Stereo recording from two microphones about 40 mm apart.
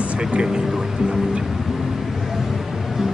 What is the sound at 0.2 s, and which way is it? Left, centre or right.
Speech, right.